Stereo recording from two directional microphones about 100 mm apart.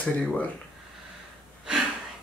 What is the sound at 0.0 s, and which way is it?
Speech, 10° left (ahead or behind).